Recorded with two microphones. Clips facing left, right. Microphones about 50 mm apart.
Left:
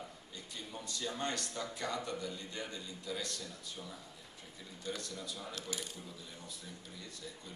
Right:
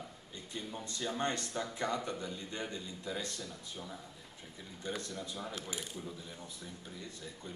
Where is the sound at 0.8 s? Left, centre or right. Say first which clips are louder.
Right 3 dB; right.